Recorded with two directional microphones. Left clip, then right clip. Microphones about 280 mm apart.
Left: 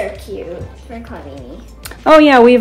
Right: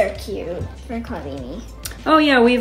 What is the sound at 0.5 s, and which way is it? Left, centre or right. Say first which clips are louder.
Speech: even; centre.